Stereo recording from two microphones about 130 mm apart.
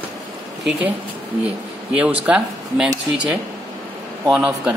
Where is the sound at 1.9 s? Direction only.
10° right (ahead or behind).